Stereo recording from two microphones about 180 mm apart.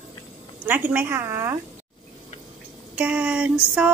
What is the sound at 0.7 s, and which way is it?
Speech, 10° right (ahead or behind).